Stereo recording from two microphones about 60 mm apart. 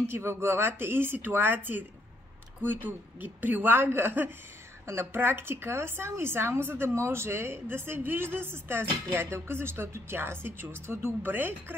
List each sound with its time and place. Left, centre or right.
0.0 s a woman's voice: right